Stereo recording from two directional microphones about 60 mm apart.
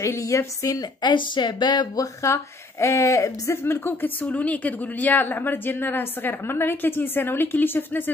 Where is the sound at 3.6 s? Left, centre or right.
Left.